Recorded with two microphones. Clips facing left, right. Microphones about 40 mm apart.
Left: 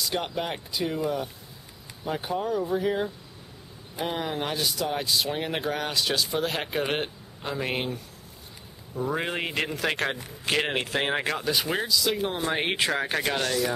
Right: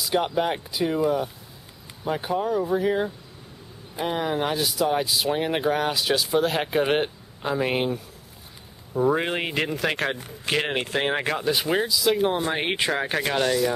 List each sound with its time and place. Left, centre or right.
0.0 s speech: centre
9.3 s speech: centre
9.6 s speech: centre